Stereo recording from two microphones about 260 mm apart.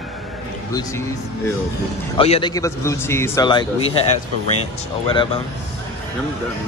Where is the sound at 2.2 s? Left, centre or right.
Centre.